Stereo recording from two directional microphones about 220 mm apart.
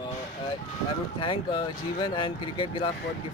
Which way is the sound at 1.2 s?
20° left (ahead or behind).